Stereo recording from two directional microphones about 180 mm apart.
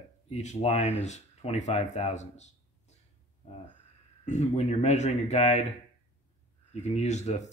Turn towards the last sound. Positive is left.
turn(degrees=40)  # may be behind; listen again after turning